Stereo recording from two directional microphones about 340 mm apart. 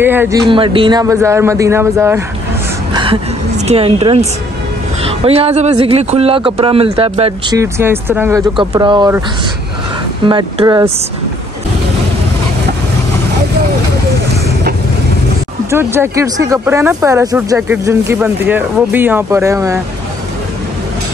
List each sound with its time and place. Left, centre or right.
0.0 s speech: centre
2.9 s a sound: centre
3.6 s speech: centre
10.2 s speech: centre
15.7 s speech: centre